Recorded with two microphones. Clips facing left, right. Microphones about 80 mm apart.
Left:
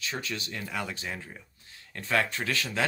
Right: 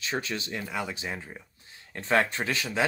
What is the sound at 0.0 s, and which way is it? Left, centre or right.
Speech, right.